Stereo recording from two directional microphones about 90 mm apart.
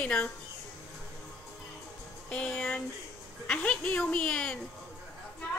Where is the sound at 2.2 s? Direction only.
10° left (ahead or behind).